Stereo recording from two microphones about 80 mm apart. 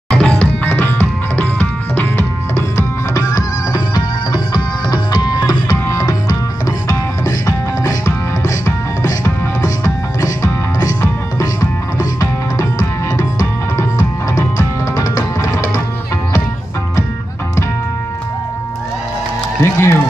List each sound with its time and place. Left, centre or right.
0.1 s music: centre
3.2 s music: left
5.9 s music: left
19.6 s music: left